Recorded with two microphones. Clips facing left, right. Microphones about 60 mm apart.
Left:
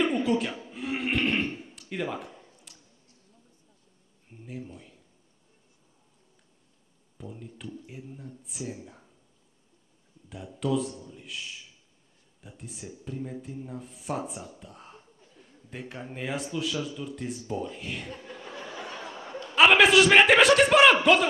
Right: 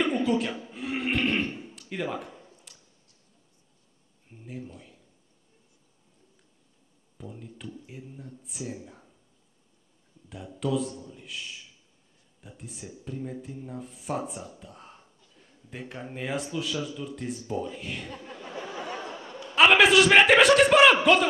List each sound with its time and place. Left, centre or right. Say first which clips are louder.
0.0 s neigh: even; centre
4.3 s speech: even; centre
7.2 s speech: even; centre
10.3 s speech: left 1 dB; centre
14.6 s a sound: even; centre
17.0 s speech: even; centre
18.2 s chuckle: right 2 dB; right
19.5 s speech: even; centre